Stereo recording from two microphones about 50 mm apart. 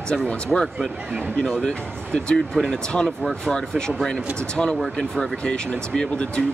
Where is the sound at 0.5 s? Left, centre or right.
Centre.